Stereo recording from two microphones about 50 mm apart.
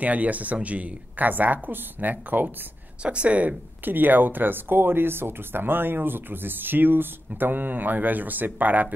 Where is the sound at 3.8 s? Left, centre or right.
Right.